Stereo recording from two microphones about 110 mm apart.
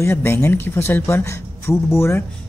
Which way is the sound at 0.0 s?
20° left (ahead or behind).